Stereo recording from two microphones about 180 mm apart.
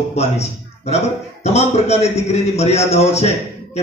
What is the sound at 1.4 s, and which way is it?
A man's voice, 35° left (ahead or behind).